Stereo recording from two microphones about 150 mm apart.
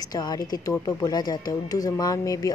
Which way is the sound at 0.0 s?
25° left (ahead or behind).